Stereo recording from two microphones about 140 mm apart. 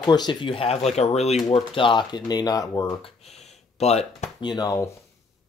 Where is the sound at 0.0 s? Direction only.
30° left (ahead or behind); by 1.4 s 50° left (ahead or behind).